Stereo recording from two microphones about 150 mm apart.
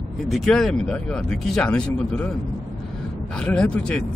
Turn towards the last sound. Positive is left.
turn(degrees=5)  # may be behind; listen again after turning